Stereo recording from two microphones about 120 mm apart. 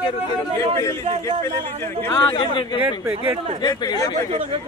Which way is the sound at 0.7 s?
25° left (ahead or behind).